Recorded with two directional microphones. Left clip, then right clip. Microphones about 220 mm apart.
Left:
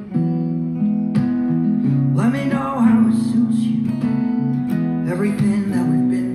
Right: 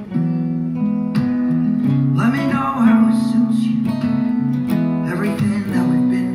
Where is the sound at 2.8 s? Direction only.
25° right (ahead or behind).